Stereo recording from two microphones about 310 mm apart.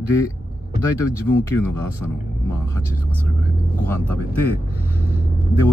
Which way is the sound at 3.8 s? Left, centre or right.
Centre.